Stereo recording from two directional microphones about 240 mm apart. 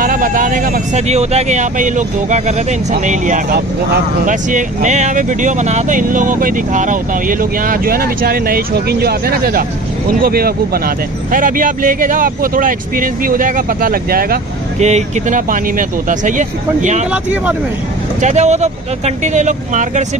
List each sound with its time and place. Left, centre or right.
0.0 s speech: right
17.1 s speech: centre
18.2 s speech: right